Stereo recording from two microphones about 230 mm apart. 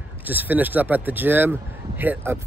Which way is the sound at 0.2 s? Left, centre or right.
Centre.